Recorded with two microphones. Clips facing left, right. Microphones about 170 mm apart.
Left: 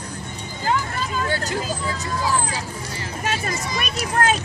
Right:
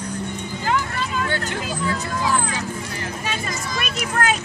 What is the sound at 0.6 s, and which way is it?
Hubbub, 40° left (ahead or behind).